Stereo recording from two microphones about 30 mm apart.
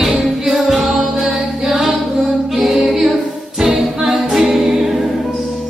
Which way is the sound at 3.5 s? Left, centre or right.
Centre.